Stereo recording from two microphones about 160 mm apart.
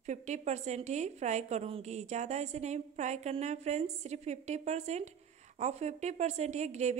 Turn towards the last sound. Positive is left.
turn(degrees=-45)  # may be behind; listen again after turning